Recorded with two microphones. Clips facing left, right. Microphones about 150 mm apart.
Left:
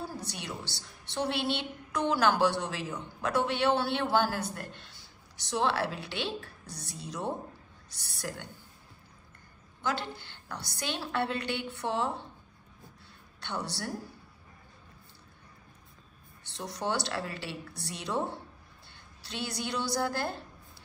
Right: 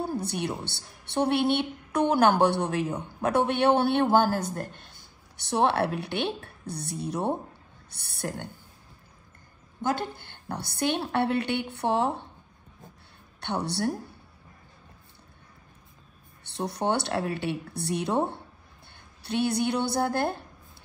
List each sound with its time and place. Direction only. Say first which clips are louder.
0.0 s a woman's voice: right 9 dB; 55° right (ahead or behind)
9.8 s a woman's voice: right 5 dB; 50° right (ahead or behind)
13.4 s a woman's voice: right 8 dB; 60° right (ahead or behind)
16.4 s a woman's voice: right 6 dB; 60° right (ahead or behind)